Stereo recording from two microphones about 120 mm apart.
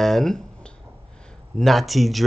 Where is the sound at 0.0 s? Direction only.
5° left (ahead or behind).